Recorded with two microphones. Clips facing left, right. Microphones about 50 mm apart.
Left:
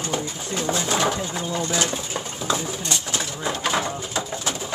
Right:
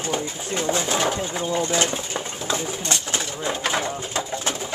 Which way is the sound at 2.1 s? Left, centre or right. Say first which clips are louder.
Left 1 dB; centre.